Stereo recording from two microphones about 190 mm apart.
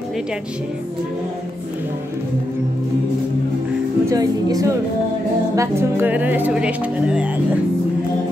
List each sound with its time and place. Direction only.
4.0 s speech: 20° right (ahead or behind)